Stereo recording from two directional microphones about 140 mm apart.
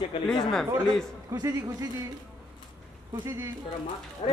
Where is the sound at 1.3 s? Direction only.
25° right (ahead or behind).